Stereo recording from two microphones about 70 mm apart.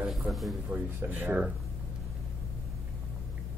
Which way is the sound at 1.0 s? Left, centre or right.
Right.